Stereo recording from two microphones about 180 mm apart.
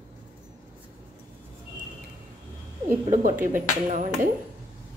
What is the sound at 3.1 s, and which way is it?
Speech, 45° right (ahead or behind).